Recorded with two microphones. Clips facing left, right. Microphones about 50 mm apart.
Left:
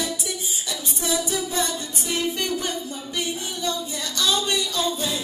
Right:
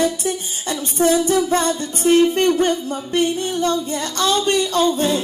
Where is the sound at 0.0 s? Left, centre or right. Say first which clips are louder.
Right 9 dB; right.